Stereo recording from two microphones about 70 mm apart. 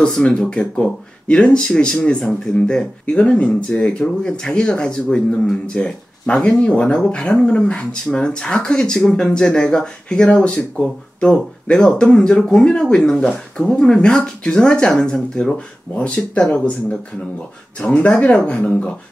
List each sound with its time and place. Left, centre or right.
0.0 s speech: centre
17.7 s speech: centre